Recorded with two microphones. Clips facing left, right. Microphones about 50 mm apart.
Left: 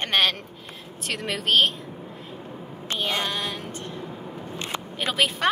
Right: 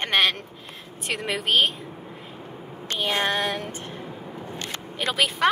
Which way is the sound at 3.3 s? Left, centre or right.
Right.